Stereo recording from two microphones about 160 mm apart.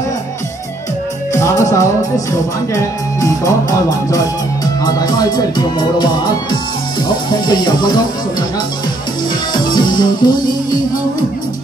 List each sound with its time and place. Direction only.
1.3 s speech: 20° left (ahead or behind)
4.8 s speech: 25° left (ahead or behind)
9.5 s music: 25° left (ahead or behind)